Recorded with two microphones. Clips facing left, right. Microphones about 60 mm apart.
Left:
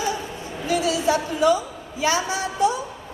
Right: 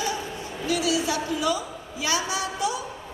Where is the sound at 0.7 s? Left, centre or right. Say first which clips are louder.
Left 4 dB; left.